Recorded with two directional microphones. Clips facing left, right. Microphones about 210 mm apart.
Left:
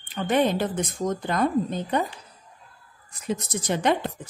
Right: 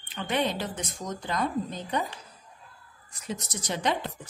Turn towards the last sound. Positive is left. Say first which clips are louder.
# left 6 dB
turn(degrees=55)  # may be behind; listen again after turning